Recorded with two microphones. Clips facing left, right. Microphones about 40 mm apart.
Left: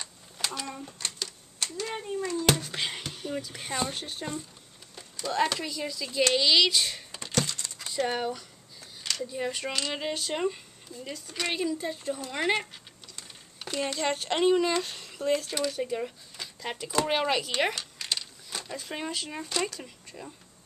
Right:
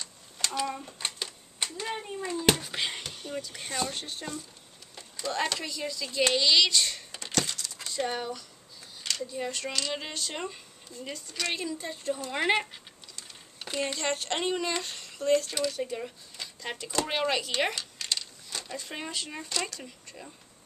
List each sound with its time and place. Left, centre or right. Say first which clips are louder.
0.4 s a sound: right 3 dB; centre
1.0 s typewriter: right 1 dB; right
2.0 s speech: even; centre
7.5 s a sound: even; left
8.1 s speech: left 3 dB; centre
11.2 s speech: left 1 dB; centre
11.5 s speech: left 4 dB; centre
13.6 s a sound: even; centre
13.9 s speech: left 3 dB; centre